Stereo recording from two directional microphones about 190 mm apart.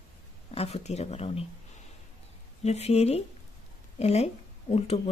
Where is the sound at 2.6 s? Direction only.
35° left (ahead or behind).